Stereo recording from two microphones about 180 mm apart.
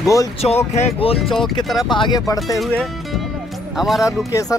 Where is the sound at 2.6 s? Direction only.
Centre (ahead or behind).